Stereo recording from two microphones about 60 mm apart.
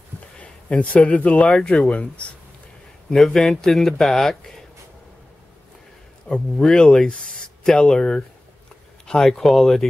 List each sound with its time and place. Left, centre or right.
0.4 s speech: left
3.1 s speech: centre
6.6 s speech: centre